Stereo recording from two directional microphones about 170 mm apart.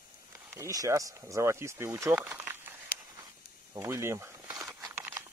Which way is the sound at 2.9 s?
65° left (ahead or behind).